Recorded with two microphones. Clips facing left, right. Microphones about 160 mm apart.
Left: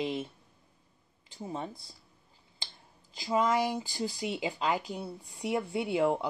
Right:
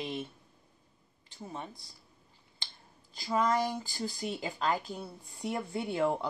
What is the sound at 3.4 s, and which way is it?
Speech, 5° left (ahead or behind).